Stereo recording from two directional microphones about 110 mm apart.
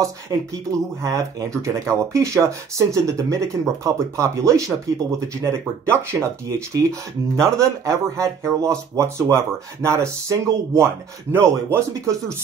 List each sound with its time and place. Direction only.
0.3 s speech: 40° right (ahead or behind); by 12.2 s 20° right (ahead or behind)